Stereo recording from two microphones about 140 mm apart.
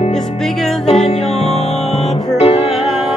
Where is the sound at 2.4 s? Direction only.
50° left (ahead or behind).